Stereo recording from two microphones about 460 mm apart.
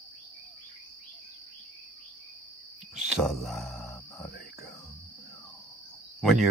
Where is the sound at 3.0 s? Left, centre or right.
Centre.